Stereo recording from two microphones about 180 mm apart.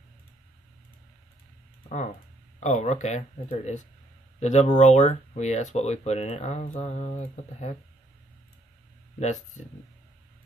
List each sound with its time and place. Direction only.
2.6 s speech: 40° left (ahead or behind)
9.2 s speech: 40° left (ahead or behind)